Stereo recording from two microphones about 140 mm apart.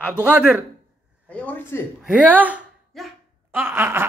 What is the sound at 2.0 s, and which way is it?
Speech, 10° right (ahead or behind).